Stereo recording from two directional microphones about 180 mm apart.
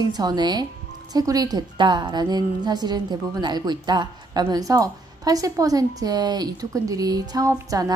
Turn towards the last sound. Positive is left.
turn(degrees=-20)  # may be behind; listen again after turning